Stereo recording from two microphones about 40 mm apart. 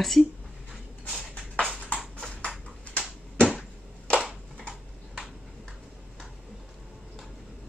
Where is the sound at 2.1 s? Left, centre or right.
Left.